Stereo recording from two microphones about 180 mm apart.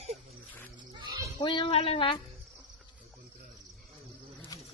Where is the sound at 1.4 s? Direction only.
30° left (ahead or behind).